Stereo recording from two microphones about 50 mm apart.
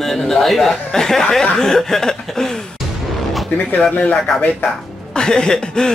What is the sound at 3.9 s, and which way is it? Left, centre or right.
Speech, left.